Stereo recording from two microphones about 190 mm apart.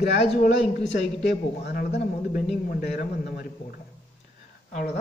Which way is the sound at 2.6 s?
50° left (ahead or behind).